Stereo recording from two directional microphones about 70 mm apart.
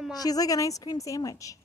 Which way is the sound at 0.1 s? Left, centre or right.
Left.